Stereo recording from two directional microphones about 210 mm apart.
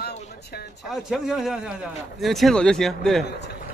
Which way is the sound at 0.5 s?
50° left (ahead or behind).